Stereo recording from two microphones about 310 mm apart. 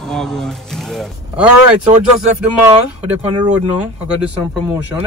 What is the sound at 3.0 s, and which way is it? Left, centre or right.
Speech, centre.